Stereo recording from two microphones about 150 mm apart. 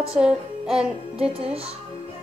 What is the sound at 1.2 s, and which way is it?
Speech, 40° right (ahead or behind).